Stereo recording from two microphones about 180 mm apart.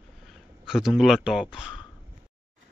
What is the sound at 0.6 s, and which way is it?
Speech, centre (ahead or behind).